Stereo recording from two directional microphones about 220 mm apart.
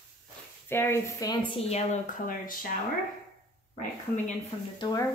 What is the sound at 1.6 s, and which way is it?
Speech, 30° left (ahead or behind).